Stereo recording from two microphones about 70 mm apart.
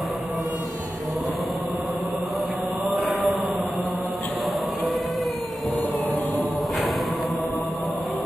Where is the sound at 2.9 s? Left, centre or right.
Centre.